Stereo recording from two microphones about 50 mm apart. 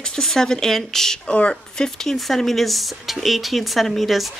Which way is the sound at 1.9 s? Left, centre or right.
Centre.